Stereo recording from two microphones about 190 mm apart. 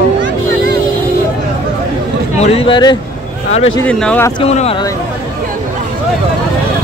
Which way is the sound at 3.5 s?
35° left (ahead or behind).